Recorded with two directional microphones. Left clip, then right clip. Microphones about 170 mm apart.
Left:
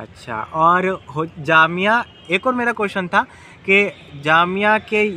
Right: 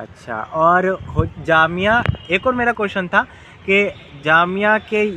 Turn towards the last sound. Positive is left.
turn(degrees=0)  # may be behind; listen again after turning